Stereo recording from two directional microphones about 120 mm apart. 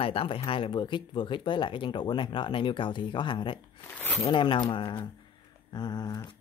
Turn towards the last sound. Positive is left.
turn(degrees=35)  # may be behind; listen again after turning